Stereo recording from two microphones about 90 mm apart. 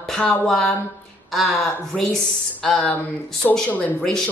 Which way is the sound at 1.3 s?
Centre (ahead or behind).